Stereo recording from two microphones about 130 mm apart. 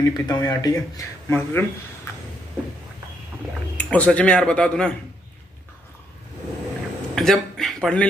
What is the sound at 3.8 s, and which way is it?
A man's voice, 10° left (ahead or behind).